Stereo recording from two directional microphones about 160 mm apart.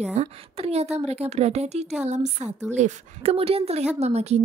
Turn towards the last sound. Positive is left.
turn(degrees=-40)  # may be behind; listen again after turning